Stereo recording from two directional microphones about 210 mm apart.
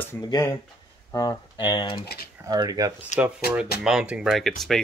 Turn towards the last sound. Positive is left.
turn(degrees=0)  # may be behind; listen again after turning